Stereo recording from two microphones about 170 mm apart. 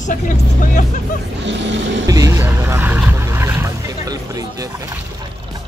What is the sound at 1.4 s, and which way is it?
Speech, 90° right.